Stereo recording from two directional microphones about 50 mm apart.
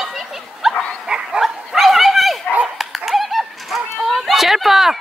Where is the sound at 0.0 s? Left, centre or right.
Centre.